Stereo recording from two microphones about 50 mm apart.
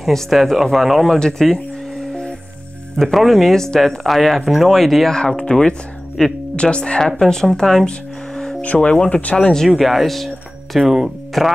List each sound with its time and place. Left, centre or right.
0.1 s speech: centre
1.4 s a sound: centre
3.0 s speech: centre
6.5 s speech: centre
8.4 s music: centre
8.6 s speech: left
9.7 s speech: centre